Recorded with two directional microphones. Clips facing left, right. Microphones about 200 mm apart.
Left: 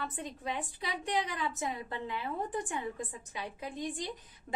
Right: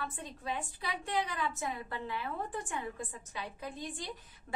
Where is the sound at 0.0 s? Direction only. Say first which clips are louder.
Left 2 dB; 20° left (ahead or behind).